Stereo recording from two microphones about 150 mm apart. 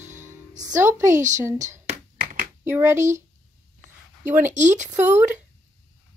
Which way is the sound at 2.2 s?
60° right (ahead or behind).